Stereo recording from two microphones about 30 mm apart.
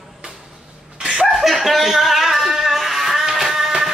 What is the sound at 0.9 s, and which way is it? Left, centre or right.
Laughter, right.